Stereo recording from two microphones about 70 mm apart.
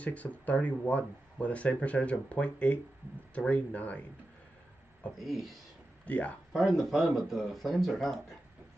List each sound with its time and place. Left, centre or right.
0.0 s speech: left
5.2 s speech: centre
6.0 s speech: left
6.5 s speech: centre